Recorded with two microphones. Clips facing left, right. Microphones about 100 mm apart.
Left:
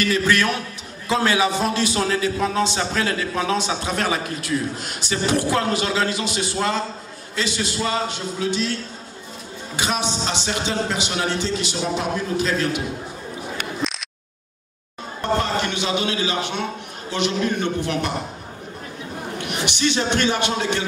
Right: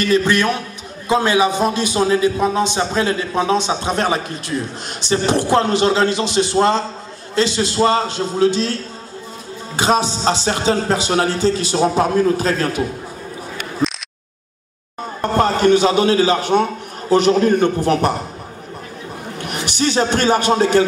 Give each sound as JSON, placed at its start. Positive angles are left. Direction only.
{"t": 0.0, "sound": "a man's voice", "side_deg": -25}
{"t": 15.3, "sound": "a man's voice", "side_deg": -45}
{"t": 19.4, "sound": "speech", "side_deg": -40}